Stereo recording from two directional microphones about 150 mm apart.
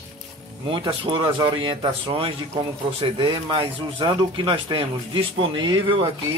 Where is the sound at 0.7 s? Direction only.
35° right (ahead or behind).